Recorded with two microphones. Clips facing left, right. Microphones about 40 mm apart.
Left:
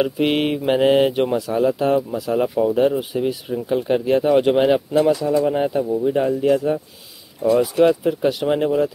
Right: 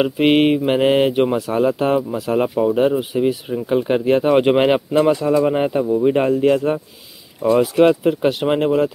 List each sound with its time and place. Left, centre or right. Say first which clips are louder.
0.0 s speech: right 4 dB; right
1.5 s speech: right 1 dB; right
4.0 s speech: right 1 dB; right
7.5 s speech: right 2 dB; right